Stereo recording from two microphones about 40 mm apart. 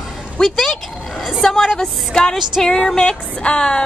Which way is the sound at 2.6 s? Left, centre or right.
Centre.